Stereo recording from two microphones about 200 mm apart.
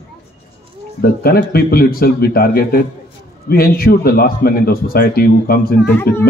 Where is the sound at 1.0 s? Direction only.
50° left (ahead or behind).